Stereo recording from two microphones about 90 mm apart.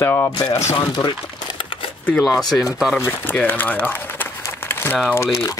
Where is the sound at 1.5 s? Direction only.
70° left (ahead or behind).